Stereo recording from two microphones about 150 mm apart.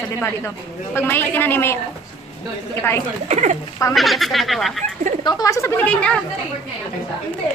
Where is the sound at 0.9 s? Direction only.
15° left (ahead or behind).